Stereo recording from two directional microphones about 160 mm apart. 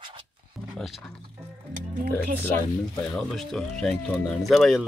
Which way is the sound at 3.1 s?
Centre (ahead or behind).